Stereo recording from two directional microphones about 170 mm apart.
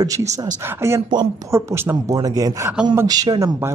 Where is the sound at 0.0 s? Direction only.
20° right (ahead or behind).